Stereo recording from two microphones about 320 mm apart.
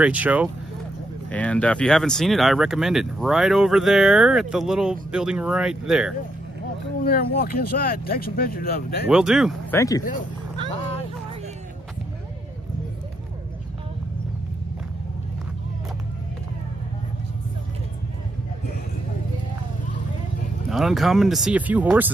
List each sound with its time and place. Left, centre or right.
0.0 s speech: centre
7.0 s speech: left
9.1 s speech: centre
9.8 s speech: centre
20.7 s speech: centre